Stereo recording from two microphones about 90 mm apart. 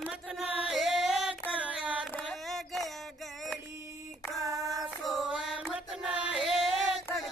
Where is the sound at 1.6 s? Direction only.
15° right (ahead or behind).